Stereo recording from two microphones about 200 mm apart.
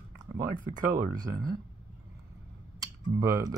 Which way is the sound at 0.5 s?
40° right (ahead or behind).